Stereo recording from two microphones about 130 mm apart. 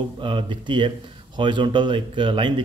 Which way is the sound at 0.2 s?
40° right (ahead or behind).